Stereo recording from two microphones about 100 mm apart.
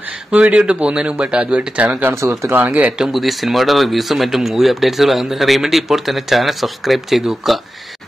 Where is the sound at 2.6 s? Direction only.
10° right (ahead or behind).